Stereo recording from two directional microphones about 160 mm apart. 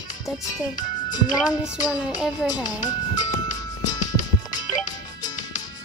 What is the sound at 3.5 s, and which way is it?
Music, 25° left (ahead or behind).